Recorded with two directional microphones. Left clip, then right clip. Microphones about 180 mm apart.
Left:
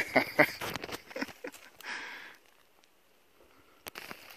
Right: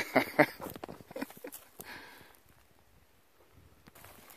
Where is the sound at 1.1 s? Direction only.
5° right (ahead or behind).